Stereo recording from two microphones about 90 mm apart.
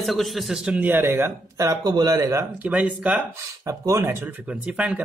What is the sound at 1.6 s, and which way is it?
Speech, 45° right (ahead or behind).